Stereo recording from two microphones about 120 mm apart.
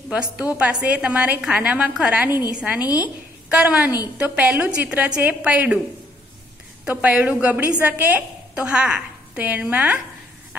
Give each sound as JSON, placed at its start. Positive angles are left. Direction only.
{"t": 0.6, "sound": "a woman's voice", "side_deg": -10}
{"t": 2.8, "sound": "a woman's voice", "side_deg": 30}
{"t": 3.4, "sound": "a woman's voice", "side_deg": -10}
{"t": 6.8, "sound": "a woman's voice", "side_deg": -10}